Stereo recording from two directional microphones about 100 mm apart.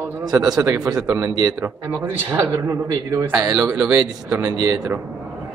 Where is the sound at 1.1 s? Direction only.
25° right (ahead or behind).